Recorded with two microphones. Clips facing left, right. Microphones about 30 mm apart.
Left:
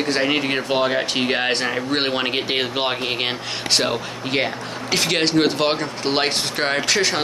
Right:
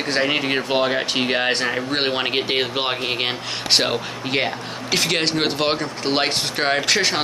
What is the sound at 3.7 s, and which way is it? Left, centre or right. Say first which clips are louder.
Speech: right 1 dB; centre.